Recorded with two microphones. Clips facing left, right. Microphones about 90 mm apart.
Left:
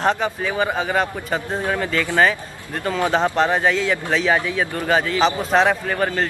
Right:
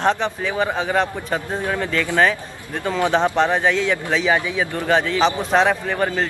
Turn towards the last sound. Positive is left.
turn(degrees=0)  # may be behind; listen again after turning